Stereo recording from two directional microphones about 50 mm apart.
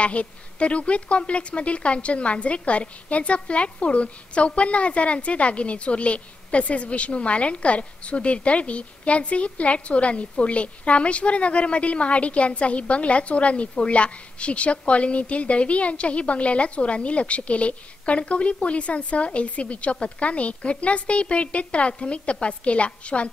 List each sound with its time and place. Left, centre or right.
0.0 s a woman's voice: left